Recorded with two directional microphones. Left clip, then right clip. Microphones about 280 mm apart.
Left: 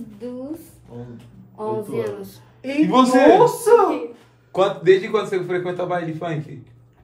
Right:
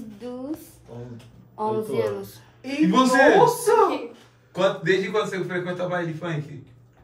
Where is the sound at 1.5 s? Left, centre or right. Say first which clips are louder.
Even; centre.